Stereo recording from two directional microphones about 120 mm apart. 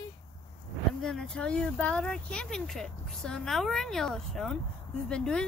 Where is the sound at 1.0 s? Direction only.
5° left (ahead or behind).